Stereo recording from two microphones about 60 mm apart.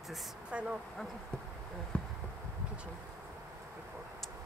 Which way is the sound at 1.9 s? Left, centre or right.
Left.